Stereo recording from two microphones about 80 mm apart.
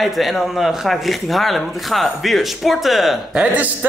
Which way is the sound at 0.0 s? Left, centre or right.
Centre.